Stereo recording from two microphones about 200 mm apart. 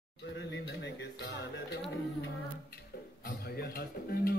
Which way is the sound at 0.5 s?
60° left (ahead or behind).